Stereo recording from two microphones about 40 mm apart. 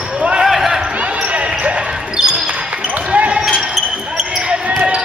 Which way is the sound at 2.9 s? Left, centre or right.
Right.